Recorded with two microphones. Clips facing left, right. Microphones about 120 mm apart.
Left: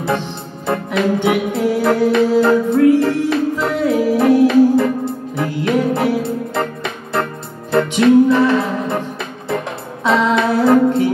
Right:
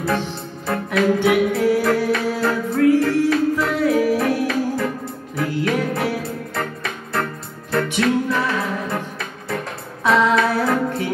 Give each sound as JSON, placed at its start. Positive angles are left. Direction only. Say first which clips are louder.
{"t": 0.7, "sound": "music", "louder": "left 2 dB", "side_deg": 25}
{"t": 7.7, "sound": "music", "louder": "left 8 dB", "side_deg": 30}
{"t": 10.0, "sound": "music", "louder": "left 2 dB", "side_deg": 25}